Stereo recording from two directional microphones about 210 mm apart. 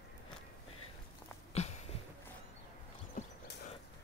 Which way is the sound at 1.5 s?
30° left (ahead or behind).